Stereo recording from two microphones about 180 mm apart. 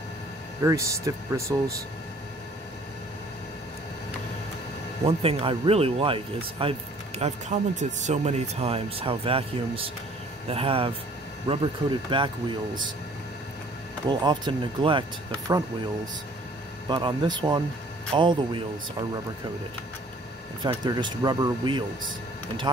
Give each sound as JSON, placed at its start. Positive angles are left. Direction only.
{"t": 0.6, "sound": "speech", "side_deg": -15}
{"t": 5.0, "sound": "speech", "side_deg": -30}
{"t": 14.0, "sound": "speech", "side_deg": -25}
{"t": 16.9, "sound": "speech", "side_deg": -25}
{"t": 20.6, "sound": "speech", "side_deg": -25}